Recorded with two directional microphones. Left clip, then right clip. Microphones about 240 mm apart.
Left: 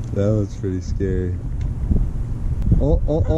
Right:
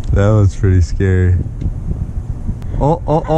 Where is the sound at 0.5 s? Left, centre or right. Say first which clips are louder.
Right 7 dB; centre.